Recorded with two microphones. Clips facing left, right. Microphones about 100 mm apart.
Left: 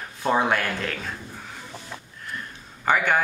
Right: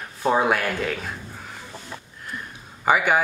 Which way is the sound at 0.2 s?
5° right (ahead or behind).